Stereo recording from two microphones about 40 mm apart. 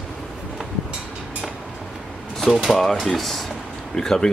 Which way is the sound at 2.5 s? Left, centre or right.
Centre.